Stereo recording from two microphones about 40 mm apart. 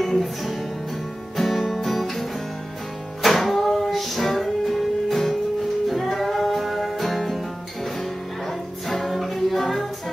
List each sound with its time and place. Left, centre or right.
0.0 s music: centre